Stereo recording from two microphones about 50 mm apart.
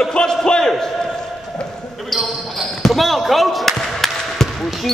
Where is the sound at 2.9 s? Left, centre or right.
Centre.